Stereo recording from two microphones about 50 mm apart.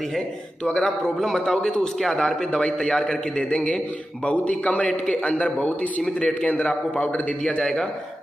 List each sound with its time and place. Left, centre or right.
0.7 s a man's voice: centre